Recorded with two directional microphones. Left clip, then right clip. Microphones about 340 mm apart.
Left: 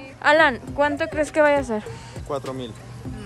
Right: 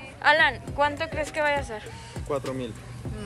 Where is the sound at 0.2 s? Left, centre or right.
Centre.